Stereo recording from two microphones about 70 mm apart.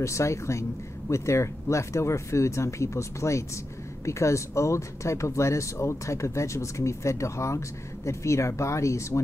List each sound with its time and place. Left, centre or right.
0.0 s speech: left